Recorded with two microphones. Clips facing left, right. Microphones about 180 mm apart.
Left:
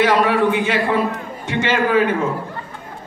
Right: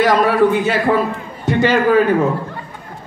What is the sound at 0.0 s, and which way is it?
A man's voice, 40° right (ahead or behind).